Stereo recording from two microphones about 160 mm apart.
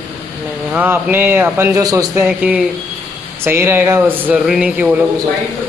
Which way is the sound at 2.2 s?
10° right (ahead or behind).